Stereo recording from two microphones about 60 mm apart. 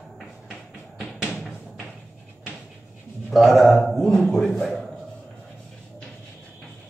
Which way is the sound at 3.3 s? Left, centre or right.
Centre.